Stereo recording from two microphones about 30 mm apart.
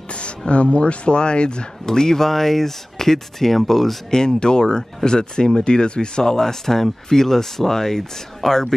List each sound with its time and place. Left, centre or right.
0.5 s speech: left
1.9 s speech: centre
4.1 s speech: left